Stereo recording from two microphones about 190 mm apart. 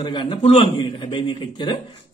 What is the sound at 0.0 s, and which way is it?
Speech, 25° left (ahead or behind).